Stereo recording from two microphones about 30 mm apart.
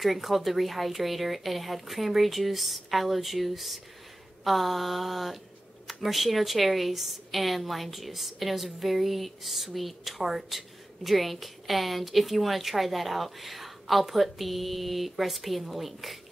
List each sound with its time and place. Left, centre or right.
0.0 s a woman's voice: centre